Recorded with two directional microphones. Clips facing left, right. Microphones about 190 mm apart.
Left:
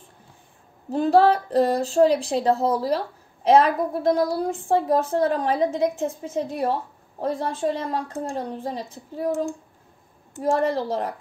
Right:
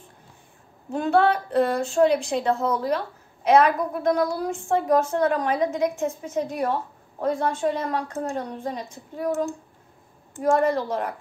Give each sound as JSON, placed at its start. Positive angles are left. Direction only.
{"t": 0.8, "sound": "a woman's voice", "side_deg": 35}
{"t": 10.4, "sound": "a woman's voice", "side_deg": 35}